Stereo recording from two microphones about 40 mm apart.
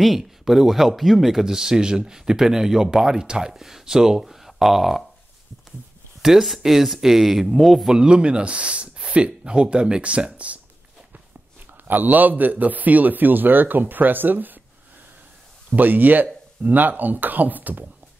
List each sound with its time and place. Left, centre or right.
0.2 s speech: centre
6.2 s speech: centre
7.9 s speech: centre
11.7 s a man's voice: right
15.7 s a man's voice: right